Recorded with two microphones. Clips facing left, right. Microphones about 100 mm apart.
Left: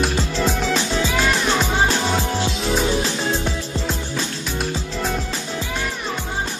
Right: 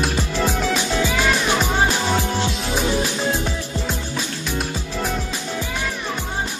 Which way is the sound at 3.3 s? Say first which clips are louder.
Left 1 dB; 15° right (ahead or behind).